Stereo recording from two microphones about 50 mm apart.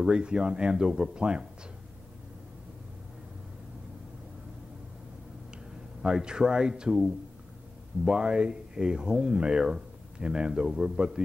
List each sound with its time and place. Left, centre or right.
0.0 s speech: centre
6.0 s speech: centre